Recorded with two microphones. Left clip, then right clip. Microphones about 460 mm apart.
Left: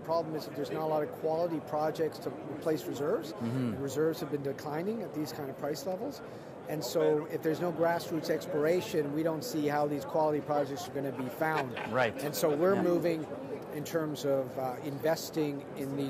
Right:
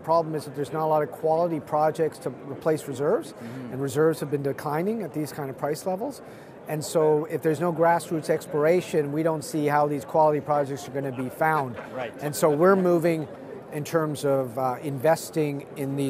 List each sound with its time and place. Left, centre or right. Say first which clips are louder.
0.1 s speech: right 9 dB; right